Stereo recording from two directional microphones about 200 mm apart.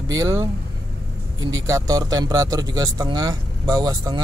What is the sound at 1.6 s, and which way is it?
A man's voice, 15° right (ahead or behind).